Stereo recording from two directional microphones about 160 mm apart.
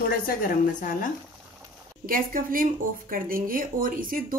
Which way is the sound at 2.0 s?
60° right (ahead or behind).